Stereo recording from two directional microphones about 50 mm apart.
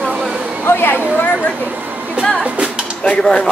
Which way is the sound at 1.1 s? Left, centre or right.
Left.